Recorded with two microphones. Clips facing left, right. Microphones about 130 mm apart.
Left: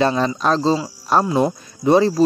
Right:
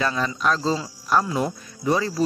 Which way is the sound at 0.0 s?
30° left (ahead or behind).